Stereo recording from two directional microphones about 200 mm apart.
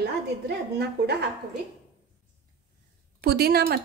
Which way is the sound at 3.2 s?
50° right (ahead or behind).